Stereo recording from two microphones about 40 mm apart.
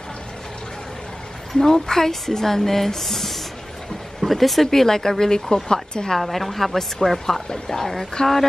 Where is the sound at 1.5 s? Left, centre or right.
Centre.